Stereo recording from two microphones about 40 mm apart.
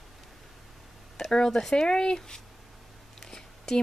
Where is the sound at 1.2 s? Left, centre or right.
Centre.